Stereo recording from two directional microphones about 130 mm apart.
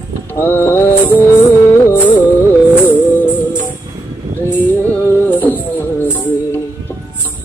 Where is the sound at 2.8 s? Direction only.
15° left (ahead or behind).